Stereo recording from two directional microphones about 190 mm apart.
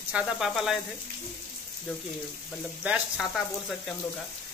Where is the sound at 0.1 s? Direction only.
5° right (ahead or behind).